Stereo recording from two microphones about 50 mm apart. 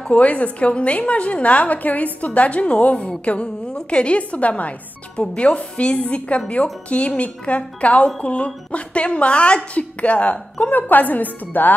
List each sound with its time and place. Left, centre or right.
0.0 s a woman's voice: left